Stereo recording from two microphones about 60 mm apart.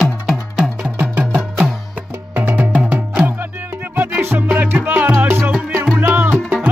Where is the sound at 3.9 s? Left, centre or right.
Right.